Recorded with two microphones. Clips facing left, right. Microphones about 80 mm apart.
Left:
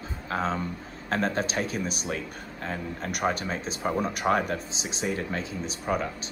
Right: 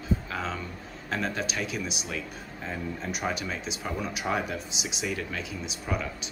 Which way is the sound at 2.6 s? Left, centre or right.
Left.